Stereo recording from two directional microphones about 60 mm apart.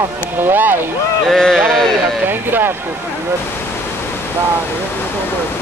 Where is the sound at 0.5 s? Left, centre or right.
Right.